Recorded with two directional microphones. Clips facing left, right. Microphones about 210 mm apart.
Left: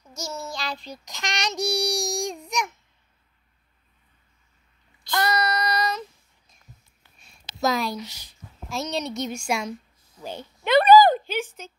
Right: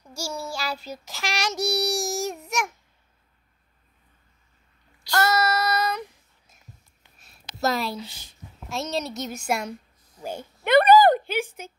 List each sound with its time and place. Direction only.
0.3 s child singing: 10° right (ahead or behind)
5.0 s child singing: 5° right (ahead or behind)
7.6 s a woman's voice: 5° right (ahead or behind)
7.9 s a woman's voice: 30° right (ahead or behind)
8.6 s a woman's voice: centre (ahead or behind)
10.6 s a sound: 55° right (ahead or behind)
11.2 s speech: 10° right (ahead or behind)